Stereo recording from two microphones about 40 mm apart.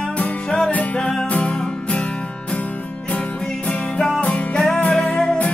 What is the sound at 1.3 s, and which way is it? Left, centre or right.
Music, left.